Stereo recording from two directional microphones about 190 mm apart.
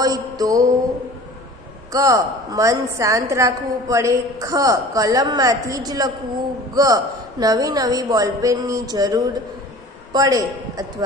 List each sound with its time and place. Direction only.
0.0 s a woman's voice: 20° right (ahead or behind)
1.9 s a woman's voice: 20° right (ahead or behind)